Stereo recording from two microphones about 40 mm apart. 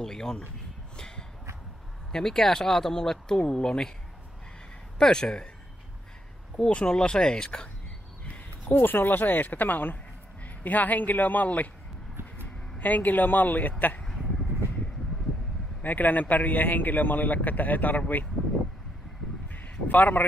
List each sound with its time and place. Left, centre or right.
0.0 s speech: centre
0.9 s a sound: centre
2.1 s speech: centre
4.9 s speech: left
6.7 s speech: left
8.6 s a man's voice: left
12.7 s a man's voice: left
15.8 s a man's voice: left
19.5 s a sound: left